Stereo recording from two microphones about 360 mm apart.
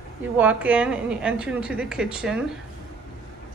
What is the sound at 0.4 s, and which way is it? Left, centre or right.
A woman's voice, centre.